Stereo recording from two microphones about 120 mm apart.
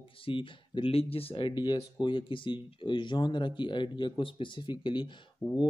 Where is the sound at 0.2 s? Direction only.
45° left (ahead or behind).